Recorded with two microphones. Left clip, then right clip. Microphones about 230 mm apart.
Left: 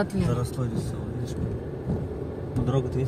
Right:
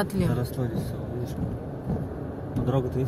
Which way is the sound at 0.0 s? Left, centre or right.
Centre.